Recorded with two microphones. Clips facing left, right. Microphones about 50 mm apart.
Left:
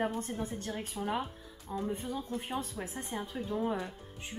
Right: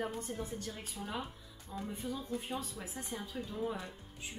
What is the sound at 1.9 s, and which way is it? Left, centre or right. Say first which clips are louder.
A woman's voice: left 2 dB; left.